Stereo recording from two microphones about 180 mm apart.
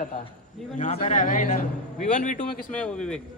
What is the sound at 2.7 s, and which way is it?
Speech, 5° left (ahead or behind).